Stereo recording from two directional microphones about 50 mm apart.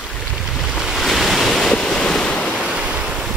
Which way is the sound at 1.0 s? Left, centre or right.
Centre.